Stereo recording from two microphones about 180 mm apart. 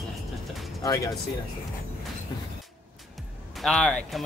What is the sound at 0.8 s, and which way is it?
Speech, 20° left (ahead or behind).